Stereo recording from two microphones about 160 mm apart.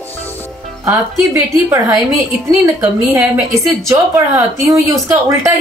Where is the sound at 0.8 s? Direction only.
15° right (ahead or behind).